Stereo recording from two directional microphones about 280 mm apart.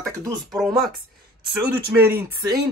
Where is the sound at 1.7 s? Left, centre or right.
Right.